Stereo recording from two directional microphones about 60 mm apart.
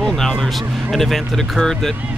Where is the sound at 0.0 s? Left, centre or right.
Centre.